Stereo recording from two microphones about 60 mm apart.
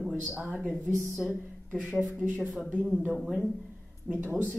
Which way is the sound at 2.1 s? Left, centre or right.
Right.